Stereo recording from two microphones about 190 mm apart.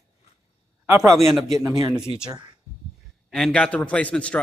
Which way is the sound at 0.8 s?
15° right (ahead or behind).